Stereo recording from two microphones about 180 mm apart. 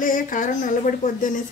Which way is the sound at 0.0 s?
50° left (ahead or behind).